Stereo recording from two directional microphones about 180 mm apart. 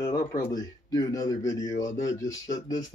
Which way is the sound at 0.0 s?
20° left (ahead or behind).